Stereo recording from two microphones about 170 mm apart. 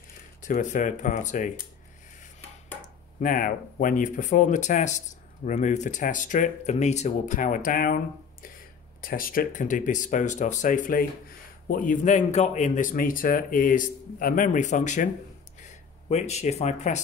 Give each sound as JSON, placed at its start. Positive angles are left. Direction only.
{"t": 0.5, "sound": "speech", "side_deg": 45}
{"t": 3.2, "sound": "speech", "side_deg": 55}